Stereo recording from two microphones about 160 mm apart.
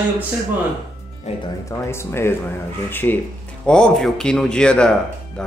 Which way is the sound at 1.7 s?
15° left (ahead or behind).